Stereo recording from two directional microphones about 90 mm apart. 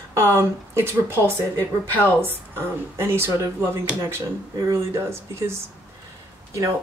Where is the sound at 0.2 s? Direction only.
25° right (ahead or behind).